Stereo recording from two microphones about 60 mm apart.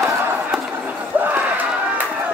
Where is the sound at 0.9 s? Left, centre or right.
Right.